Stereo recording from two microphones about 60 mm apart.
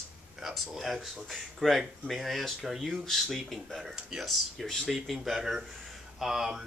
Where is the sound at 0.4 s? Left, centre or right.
Centre.